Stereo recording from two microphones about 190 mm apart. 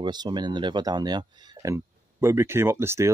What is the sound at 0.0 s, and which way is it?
Speech, 25° right (ahead or behind).